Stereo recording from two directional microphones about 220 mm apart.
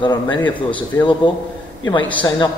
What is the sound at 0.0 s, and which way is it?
A man's voice, 20° left (ahead or behind).